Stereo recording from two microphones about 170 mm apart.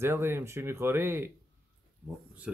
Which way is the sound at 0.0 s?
15° right (ahead or behind).